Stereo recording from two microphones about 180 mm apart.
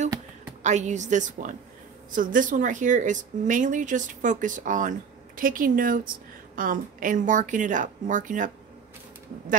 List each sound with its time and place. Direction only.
0.6 s a woman's voice: 40° right (ahead or behind)